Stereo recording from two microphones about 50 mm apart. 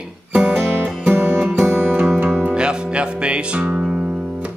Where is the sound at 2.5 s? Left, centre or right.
Centre.